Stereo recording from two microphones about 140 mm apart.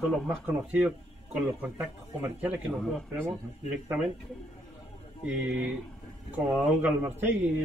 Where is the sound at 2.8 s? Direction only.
5° left (ahead or behind).